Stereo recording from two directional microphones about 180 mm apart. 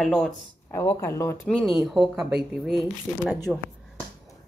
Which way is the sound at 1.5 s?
Centre (ahead or behind).